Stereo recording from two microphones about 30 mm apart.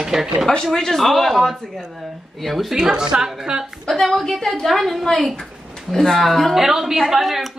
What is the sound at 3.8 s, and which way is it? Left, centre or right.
Speech, centre.